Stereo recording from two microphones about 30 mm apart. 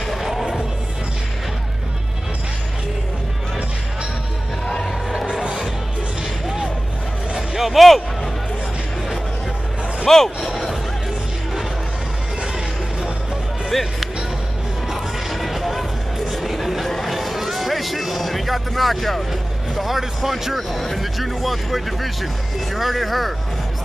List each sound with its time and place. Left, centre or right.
0.2 s music: centre
6.4 s vehicle: centre
7.3 s a sound: centre
10.0 s speech: centre
12.4 s a sound: right
13.7 s music: centre
15.3 s music: centre
16.8 s chatter: centre
17.1 s music: centre
20.2 s speech: centre